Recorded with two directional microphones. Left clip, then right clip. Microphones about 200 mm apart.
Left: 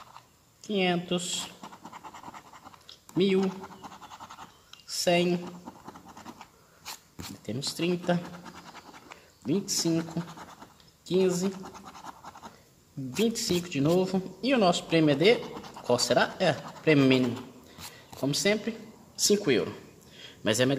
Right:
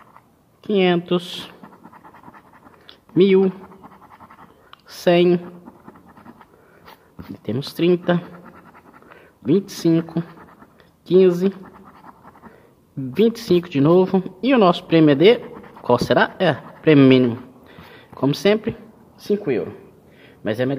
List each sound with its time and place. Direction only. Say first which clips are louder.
0.7 s speech: right 10 dB; 30° right (ahead or behind)
1.6 s scratch: right 1 dB; centre (ahead or behind)
2.9 s typing: right 11 dB; 30° right (ahead or behind)
4.6 s a sound: right 9 dB; 35° right (ahead or behind)
7.4 s speech: right 11 dB; 35° right (ahead or behind)
9.5 s speech: right 10 dB; 35° right (ahead or behind)
11.6 s scratch: right 1 dB; 5° right (ahead or behind)
13.1 s speech: right 11 dB; 30° right (ahead or behind)
19.1 s speech: right 3 dB; 5° right (ahead or behind)
20.2 s a sound: right 3 dB; 5° right (ahead or behind)